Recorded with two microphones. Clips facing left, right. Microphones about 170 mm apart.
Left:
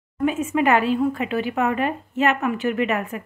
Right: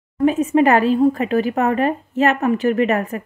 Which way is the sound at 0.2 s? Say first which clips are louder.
Right 6 dB; 35° right (ahead or behind).